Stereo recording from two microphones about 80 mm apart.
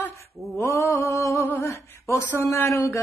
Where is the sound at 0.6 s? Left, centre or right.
Left.